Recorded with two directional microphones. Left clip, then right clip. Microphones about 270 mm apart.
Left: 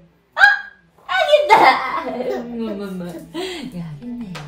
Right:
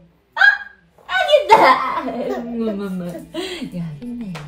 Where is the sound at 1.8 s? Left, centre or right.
Centre.